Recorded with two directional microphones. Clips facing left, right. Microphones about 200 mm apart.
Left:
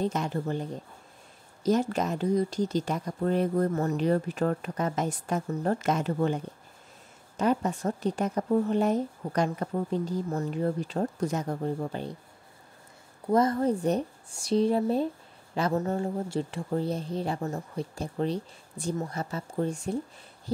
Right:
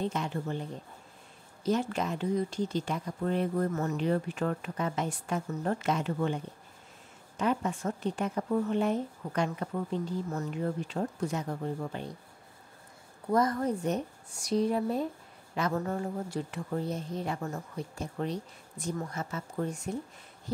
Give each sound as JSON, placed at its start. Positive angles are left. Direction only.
{"t": 0.0, "sound": "speech", "side_deg": 40}
{"t": 13.3, "sound": "a woman's voice", "side_deg": 25}